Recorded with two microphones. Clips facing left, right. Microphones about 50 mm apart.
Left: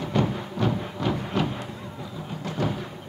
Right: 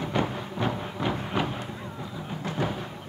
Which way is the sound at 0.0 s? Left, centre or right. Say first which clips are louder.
Left 2 dB; centre.